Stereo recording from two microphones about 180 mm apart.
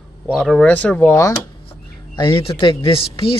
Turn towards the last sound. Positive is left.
turn(degrees=30)  # may be behind; listen again after turning